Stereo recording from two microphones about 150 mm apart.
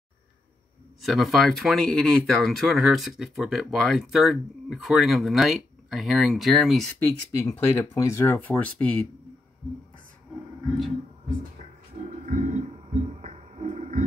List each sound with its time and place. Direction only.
1.0 s speech: centre (ahead or behind)
7.0 s speech: 15° left (ahead or behind)
12.3 s a sound: 55° right (ahead or behind)